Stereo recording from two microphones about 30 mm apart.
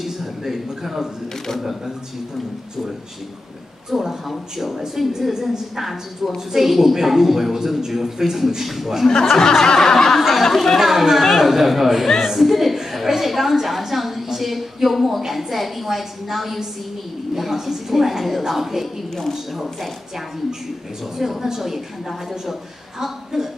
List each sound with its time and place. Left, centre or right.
0.4 s a woman's voice: centre
3.9 s a woman's voice: centre
9.4 s snicker: centre
10.2 s speech: centre
10.8 s a woman's voice: centre
11.2 s snicker: centre
11.5 s a woman's voice: centre
21.2 s a woman's voice: centre
23.0 s a woman's voice: centre